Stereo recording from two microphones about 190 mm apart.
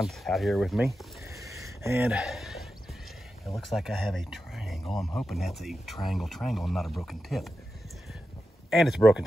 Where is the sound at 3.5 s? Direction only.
Centre (ahead or behind).